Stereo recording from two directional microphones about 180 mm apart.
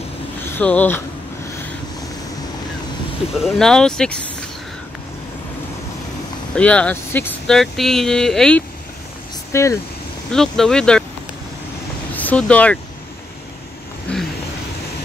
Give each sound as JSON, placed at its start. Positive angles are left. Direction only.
{"t": 0.5, "sound": "speech", "side_deg": 10}
{"t": 3.3, "sound": "speech", "side_deg": 0}
{"t": 6.5, "sound": "speech", "side_deg": 5}
{"t": 9.5, "sound": "speech", "side_deg": 15}
{"t": 10.3, "sound": "speech", "side_deg": 5}
{"t": 12.1, "sound": "speech", "side_deg": 10}
{"t": 14.1, "sound": "a sound", "side_deg": 5}